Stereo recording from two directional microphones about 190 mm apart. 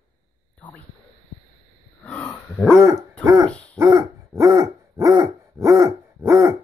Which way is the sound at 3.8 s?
20° right (ahead or behind).